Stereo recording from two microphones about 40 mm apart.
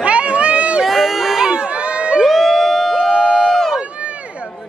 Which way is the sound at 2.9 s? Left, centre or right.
Centre.